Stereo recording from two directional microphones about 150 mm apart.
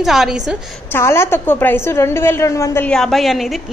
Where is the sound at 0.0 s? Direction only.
Centre (ahead or behind).